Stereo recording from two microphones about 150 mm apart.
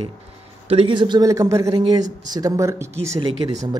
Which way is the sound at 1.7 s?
35° right (ahead or behind).